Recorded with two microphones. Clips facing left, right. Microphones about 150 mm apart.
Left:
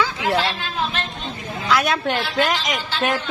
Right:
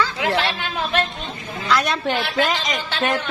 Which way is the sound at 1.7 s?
Centre (ahead or behind).